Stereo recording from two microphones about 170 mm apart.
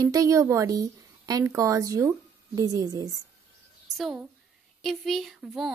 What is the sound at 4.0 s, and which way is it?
A woman's voice, centre (ahead or behind).